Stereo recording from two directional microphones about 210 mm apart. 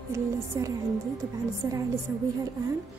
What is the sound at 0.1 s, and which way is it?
Speech, 15° right (ahead or behind).